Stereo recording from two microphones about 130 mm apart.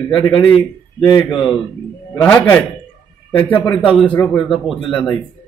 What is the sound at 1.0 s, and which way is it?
Speech, 35° left (ahead or behind).